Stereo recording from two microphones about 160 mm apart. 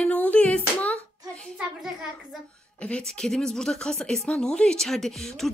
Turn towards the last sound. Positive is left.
turn(degrees=0)  # may be behind; listen again after turning